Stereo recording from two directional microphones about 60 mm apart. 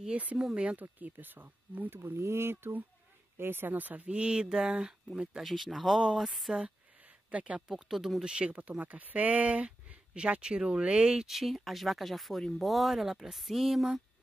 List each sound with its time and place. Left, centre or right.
0.1 s speech: right
0.9 s speech: right
2.0 s speech: right
4.1 s speech: centre
5.4 s speech: centre
7.2 s speech: right
7.6 s speech: centre
8.2 s speech: centre